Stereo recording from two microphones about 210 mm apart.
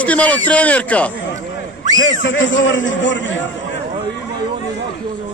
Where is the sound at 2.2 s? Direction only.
65° left (ahead or behind).